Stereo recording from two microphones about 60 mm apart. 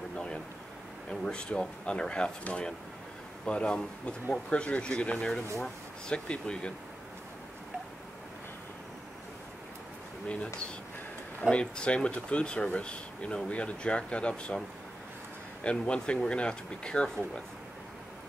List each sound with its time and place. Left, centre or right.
1.2 s speech: centre
10.2 s speech: centre
15.6 s speech: centre